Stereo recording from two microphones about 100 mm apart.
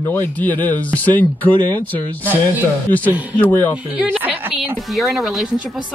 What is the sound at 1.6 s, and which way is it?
Speech, 50° right (ahead or behind).